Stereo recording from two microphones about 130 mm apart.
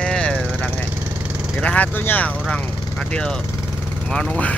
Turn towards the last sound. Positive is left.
turn(degrees=5)  # may be behind; listen again after turning